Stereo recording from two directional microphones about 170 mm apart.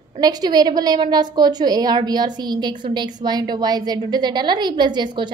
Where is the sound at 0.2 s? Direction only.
25° right (ahead or behind).